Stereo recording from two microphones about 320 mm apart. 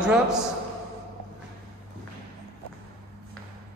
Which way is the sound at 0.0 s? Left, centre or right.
Centre.